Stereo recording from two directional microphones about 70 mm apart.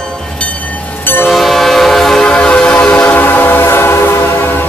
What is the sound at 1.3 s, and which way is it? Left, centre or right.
Train, centre.